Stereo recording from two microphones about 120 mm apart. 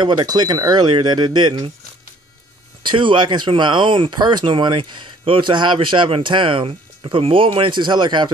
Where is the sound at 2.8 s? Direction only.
40° right (ahead or behind).